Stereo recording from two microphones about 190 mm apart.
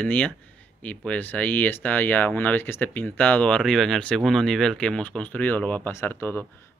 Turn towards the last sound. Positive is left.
turn(degrees=10)  # may be behind; listen again after turning